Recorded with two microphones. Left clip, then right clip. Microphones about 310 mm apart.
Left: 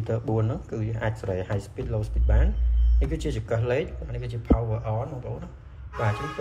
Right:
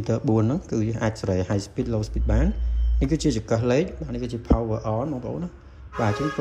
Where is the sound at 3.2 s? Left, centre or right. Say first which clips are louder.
Right 3 dB; centre.